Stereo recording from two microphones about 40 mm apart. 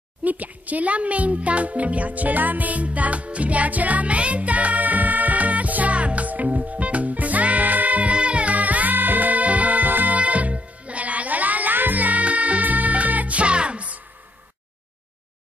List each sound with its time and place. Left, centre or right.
0.2 s music: right